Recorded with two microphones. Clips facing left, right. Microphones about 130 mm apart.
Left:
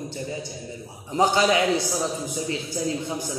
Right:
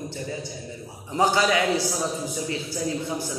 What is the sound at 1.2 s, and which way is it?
Speech, 20° left (ahead or behind).